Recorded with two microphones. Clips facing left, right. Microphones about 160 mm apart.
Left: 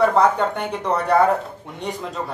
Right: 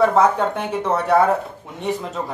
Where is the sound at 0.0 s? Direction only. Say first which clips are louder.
Right 1 dB; centre (ahead or behind).